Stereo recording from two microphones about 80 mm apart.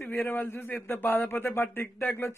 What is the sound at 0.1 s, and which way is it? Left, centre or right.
A man's voice, left.